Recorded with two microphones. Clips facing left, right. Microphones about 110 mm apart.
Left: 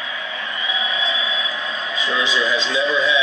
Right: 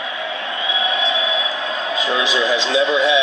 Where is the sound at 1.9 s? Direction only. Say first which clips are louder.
Right 2 dB; 90° right.